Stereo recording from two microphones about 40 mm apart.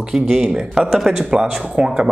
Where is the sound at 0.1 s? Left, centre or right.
Centre.